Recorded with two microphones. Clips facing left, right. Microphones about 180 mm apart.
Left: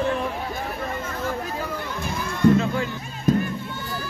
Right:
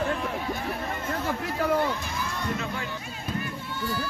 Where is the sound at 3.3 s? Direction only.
45° left (ahead or behind).